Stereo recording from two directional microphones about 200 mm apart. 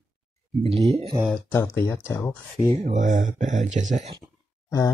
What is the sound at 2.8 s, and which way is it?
Speech, 40° right (ahead or behind).